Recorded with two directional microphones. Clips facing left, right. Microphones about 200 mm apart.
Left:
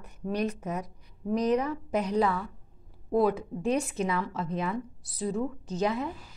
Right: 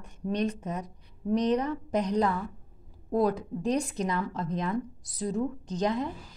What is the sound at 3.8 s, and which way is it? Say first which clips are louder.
Speech: even; 5° left (ahead or behind).